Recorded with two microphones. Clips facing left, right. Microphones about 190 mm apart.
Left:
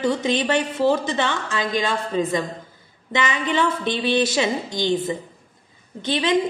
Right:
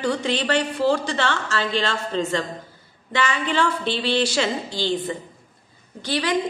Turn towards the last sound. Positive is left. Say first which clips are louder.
# left 2 dB
turn(degrees=20)  # may be behind; listen again after turning